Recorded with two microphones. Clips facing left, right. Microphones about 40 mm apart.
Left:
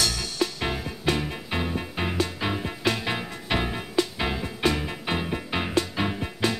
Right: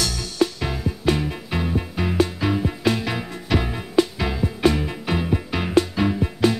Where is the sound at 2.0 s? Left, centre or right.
Left.